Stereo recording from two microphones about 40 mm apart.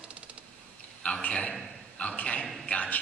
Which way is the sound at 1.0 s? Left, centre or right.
Left.